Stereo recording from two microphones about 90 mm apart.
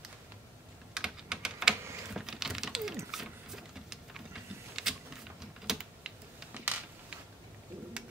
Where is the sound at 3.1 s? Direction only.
5° right (ahead or behind).